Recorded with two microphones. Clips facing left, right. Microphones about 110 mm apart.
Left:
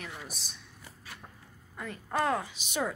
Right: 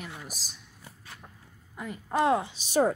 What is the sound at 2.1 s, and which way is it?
Speech, 20° right (ahead or behind).